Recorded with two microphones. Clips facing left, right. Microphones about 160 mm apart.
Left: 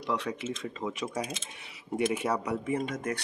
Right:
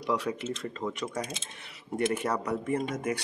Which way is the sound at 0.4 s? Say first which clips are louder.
Right 1 dB; 5° left (ahead or behind).